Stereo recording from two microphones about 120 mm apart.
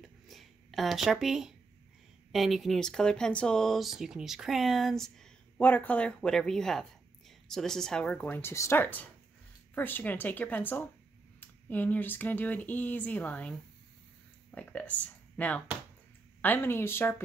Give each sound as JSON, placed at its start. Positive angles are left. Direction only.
{"t": 0.0, "sound": "a sound", "side_deg": 0}
{"t": 2.3, "sound": "speech", "side_deg": 0}
{"t": 5.6, "sound": "speech", "side_deg": 15}